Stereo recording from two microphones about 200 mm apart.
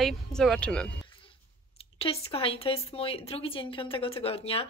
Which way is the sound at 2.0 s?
30° left (ahead or behind).